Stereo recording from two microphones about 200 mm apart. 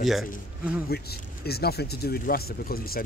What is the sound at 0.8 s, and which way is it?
Speech, 50° left (ahead or behind).